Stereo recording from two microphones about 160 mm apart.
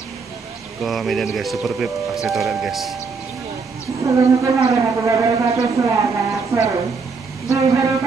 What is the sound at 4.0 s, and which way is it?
A man's voice, 20° right (ahead or behind).